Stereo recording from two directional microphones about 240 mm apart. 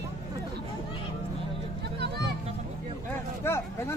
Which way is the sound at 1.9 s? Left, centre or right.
Right.